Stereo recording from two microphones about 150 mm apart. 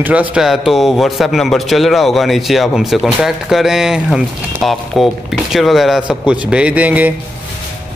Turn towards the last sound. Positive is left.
turn(degrees=-10)  # may be behind; listen again after turning